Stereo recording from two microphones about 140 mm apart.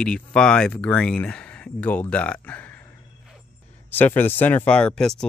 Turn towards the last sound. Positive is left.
turn(degrees=5)  # may be behind; listen again after turning